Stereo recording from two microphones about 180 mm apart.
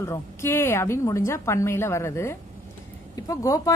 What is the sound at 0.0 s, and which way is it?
Speech, 15° left (ahead or behind).